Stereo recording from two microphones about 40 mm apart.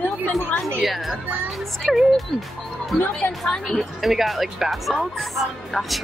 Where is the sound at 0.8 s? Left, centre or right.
Centre.